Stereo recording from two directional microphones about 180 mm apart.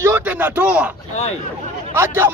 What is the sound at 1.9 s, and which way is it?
Speech, 15° right (ahead or behind).